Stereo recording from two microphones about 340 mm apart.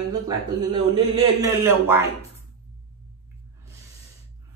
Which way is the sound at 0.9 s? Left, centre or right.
Centre.